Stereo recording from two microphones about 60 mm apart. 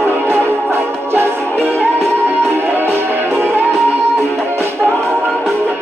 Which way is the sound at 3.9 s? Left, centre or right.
Right.